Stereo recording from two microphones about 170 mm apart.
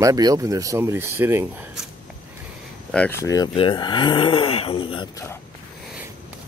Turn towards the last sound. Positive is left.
turn(degrees=30)  # may be behind; listen again after turning